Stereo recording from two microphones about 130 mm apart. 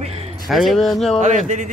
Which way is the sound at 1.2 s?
70° right (ahead or behind).